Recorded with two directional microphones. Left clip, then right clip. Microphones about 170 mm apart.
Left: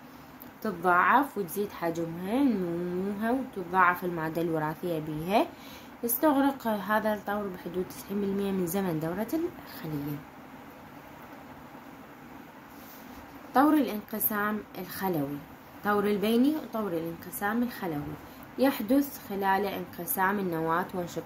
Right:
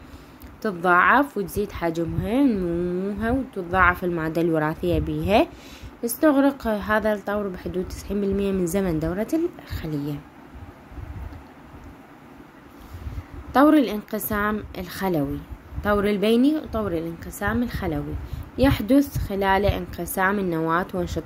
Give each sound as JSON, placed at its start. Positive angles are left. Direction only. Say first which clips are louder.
{"t": 0.6, "sound": "a woman's voice", "louder": "right 6 dB", "side_deg": -45}
{"t": 13.5, "sound": "a woman's voice", "louder": "right 7 dB", "side_deg": -45}